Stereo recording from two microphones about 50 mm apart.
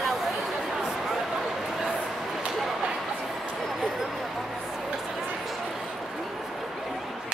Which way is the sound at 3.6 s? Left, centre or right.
Centre.